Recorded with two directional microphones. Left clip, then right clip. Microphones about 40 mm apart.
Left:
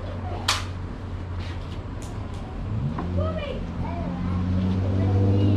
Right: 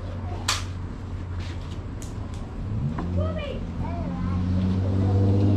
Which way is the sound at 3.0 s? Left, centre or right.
Centre.